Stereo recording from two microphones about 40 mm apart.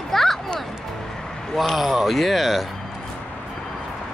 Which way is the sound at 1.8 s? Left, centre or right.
Centre.